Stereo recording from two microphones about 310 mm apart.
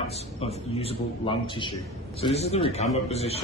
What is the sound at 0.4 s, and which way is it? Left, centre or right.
A man's voice, centre.